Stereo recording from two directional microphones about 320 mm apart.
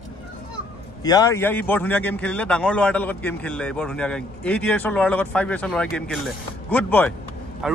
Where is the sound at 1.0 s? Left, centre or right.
Centre.